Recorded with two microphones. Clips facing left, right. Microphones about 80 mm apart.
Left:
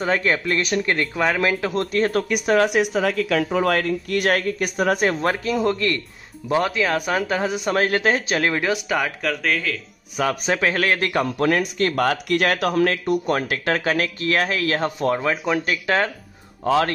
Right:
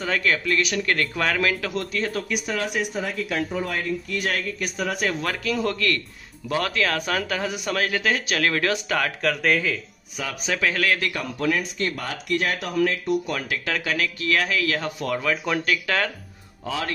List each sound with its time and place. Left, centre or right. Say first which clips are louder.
0.0 s speech: left 3 dB; left
0.8 s speech: left 3 dB; centre
1.7 s speech: left 6 dB; left; by 9.1 s centre
9.2 s speech: right 1 dB; centre
10.1 s speech: left 7 dB; left
13.4 s speech: left 5 dB; left
16.6 s speech: left 10 dB; left